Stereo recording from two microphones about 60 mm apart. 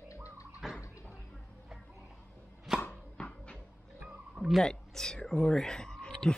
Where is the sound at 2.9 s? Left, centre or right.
Centre.